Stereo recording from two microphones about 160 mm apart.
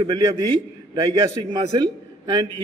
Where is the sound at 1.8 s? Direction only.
30° right (ahead or behind).